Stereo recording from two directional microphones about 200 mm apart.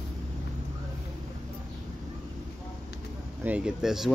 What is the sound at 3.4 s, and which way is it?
Speech, 5° right (ahead or behind).